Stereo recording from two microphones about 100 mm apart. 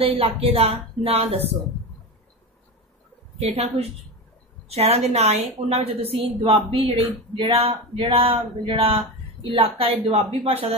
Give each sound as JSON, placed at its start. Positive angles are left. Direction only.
{"t": 0.0, "sound": "a woman's voice", "side_deg": -70}
{"t": 3.3, "sound": "a woman's voice", "side_deg": -90}
{"t": 6.4, "sound": "speech", "side_deg": -70}